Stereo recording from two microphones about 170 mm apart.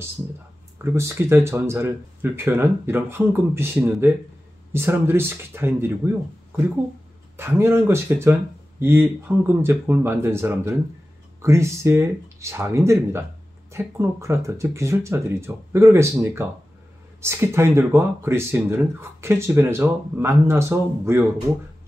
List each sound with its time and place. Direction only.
0.8 s speech: 15° right (ahead or behind)